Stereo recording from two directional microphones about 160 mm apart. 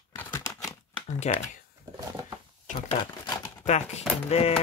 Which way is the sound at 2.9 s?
25° left (ahead or behind).